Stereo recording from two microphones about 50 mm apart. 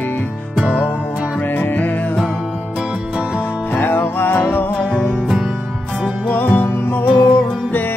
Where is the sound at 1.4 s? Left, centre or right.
Left.